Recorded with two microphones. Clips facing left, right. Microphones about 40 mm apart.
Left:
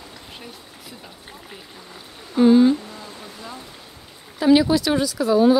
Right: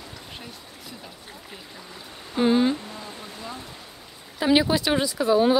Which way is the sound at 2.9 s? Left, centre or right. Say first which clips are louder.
Even; centre.